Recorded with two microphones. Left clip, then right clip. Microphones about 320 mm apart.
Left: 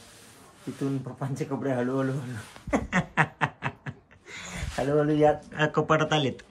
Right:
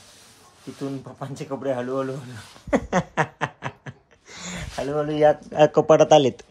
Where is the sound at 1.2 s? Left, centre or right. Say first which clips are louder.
Right 3 dB; centre.